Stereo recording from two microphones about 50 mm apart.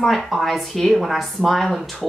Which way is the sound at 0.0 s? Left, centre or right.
Centre.